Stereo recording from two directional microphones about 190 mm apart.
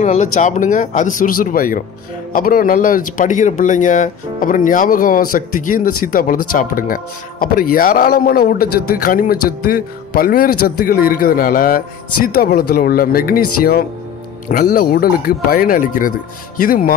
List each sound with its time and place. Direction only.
0.0 s speech: 40° left (ahead or behind)